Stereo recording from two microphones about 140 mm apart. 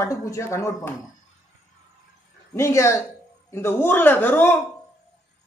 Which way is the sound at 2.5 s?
20° left (ahead or behind).